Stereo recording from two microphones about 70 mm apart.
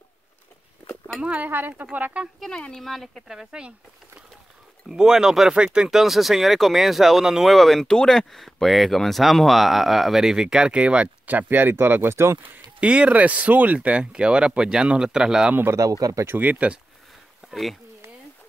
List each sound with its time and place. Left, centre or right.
1.2 s speech: centre
2.4 s speech: centre
4.8 s speech: centre; by 12.6 s right
12.8 s speech: centre
16.0 s speech: right
16.3 s speech: right
17.5 s speech: centre